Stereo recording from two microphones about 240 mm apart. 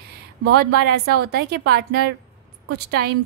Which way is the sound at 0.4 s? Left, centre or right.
Right.